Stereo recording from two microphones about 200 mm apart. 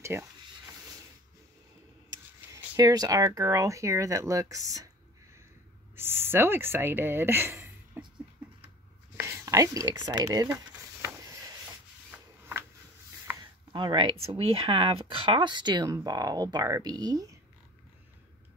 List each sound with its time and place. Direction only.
0.0 s speech: 15° right (ahead or behind)
2.5 s speech: 15° right (ahead or behind)
5.9 s speech: 10° right (ahead or behind)
9.2 s a sound: 15° right (ahead or behind)
12.1 s a sound: 5° right (ahead or behind)
13.3 s speech: 20° right (ahead or behind)